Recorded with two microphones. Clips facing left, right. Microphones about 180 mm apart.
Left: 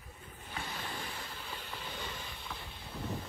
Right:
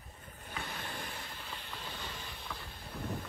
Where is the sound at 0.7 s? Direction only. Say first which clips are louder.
Left 1 dB; 55° right (ahead or behind).